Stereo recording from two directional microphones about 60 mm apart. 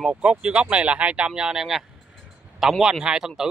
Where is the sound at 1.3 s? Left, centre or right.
Centre.